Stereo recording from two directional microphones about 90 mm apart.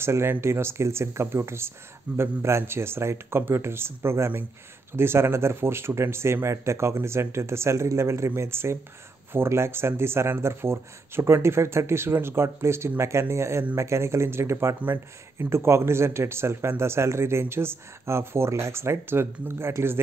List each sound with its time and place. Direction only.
0.0 s speech: 30° right (ahead or behind)